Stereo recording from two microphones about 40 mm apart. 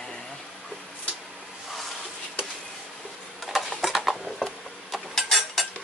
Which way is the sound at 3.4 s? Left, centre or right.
Centre.